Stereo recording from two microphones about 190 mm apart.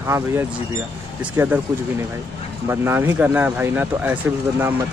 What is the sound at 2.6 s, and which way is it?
A man's voice, 15° right (ahead or behind).